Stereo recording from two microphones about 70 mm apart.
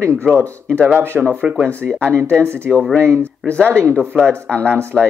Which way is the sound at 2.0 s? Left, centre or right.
Right.